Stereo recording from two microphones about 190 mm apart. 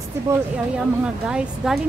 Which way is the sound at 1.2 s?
5° right (ahead or behind).